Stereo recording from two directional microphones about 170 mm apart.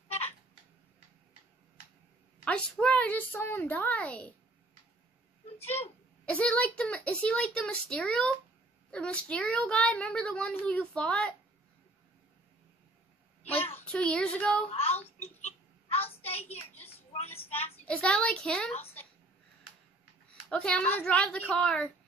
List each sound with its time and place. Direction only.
2.4 s a woman's voice: 5° left (ahead or behind)
6.2 s a woman's voice: 5° left (ahead or behind)
13.4 s a sound: 35° left (ahead or behind)
13.7 s a child's voice: 10° left (ahead or behind)
14.7 s speech: 35° left (ahead or behind)
15.4 s a sound: 35° left (ahead or behind)
16.4 s a sound: 10° left (ahead or behind)
17.6 s a child's voice: 10° left (ahead or behind)
20.4 s a woman's voice: 5° left (ahead or behind)